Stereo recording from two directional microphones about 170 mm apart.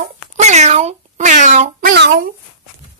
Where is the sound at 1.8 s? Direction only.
65° right (ahead or behind).